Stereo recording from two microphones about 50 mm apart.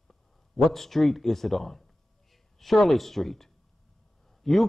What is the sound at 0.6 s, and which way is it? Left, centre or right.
A man's voice, centre.